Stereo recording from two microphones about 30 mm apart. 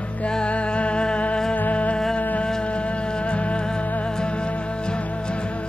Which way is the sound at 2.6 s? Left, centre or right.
Left.